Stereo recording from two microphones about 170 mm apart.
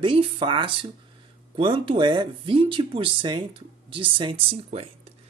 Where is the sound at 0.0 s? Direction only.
30° right (ahead or behind).